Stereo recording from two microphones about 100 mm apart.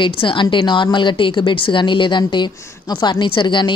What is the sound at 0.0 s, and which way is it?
A woman's voice, 55° left (ahead or behind).